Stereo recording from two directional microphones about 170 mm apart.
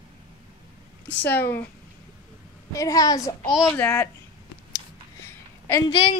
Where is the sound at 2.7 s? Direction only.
20° left (ahead or behind).